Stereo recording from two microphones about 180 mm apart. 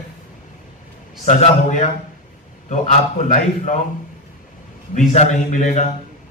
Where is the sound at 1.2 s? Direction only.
40° left (ahead or behind).